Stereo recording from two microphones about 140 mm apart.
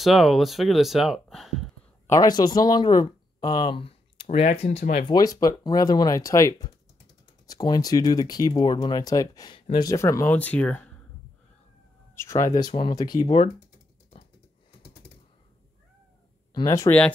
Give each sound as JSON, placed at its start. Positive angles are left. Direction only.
{"t": 0.0, "sound": "speech", "side_deg": 0}
{"t": 2.0, "sound": "speech", "side_deg": 25}
{"t": 4.3, "sound": "speech", "side_deg": 55}
{"t": 5.0, "sound": "speech", "side_deg": 30}
{"t": 12.2, "sound": "speech", "side_deg": 20}
{"t": 13.2, "sound": "speech", "side_deg": 40}
{"t": 15.0, "sound": "typing", "side_deg": 40}
{"t": 16.5, "sound": "speech", "side_deg": 25}